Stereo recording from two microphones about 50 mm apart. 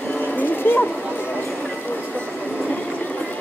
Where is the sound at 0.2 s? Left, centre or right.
Left.